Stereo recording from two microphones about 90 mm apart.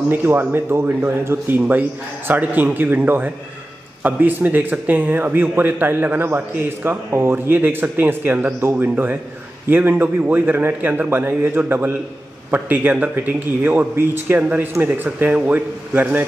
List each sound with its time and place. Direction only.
0.1 s speech: 25° right (ahead or behind)